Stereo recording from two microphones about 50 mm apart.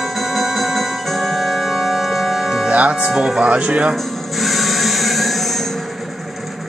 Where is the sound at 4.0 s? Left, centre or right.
Centre.